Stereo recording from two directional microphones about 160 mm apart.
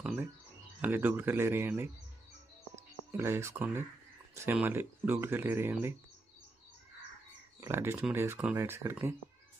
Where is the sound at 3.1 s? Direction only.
15° right (ahead or behind).